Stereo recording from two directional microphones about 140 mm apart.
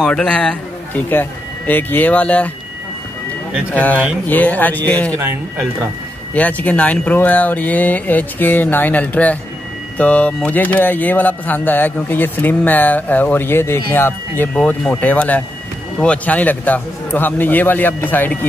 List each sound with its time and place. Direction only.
0.0 s speech: 5° left (ahead or behind)
3.7 s speech: 10° left (ahead or behind)
5.1 s speech: 20° right (ahead or behind)
6.3 s speech: 10° left (ahead or behind)